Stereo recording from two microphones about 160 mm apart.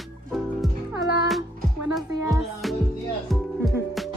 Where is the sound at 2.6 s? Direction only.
Centre (ahead or behind).